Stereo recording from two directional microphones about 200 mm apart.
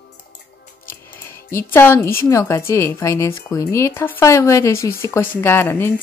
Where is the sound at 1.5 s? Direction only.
10° left (ahead or behind).